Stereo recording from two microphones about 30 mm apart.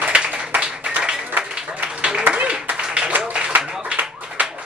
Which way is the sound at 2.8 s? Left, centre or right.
Right.